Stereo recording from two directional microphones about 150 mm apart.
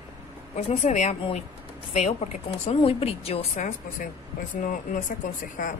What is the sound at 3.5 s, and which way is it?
Speech, 60° left (ahead or behind).